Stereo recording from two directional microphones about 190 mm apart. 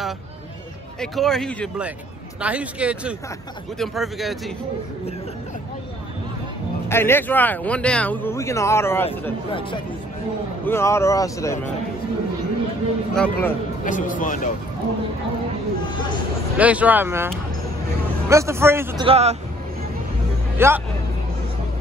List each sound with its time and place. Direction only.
1.1 s speech: centre (ahead or behind)
6.9 s speech: 10° left (ahead or behind)
9.5 s speech: 30° left (ahead or behind)
10.6 s speech: 15° left (ahead or behind)
13.1 s speech: 5° left (ahead or behind)
13.8 s speech: 45° left (ahead or behind)
16.5 s speech: 5° right (ahead or behind)
18.3 s speech: 15° right (ahead or behind)
19.0 s a man's voice: 35° right (ahead or behind)
20.5 s a man's voice: 10° right (ahead or behind)